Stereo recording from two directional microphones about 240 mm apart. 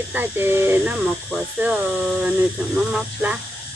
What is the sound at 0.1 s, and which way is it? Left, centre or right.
Speech, centre.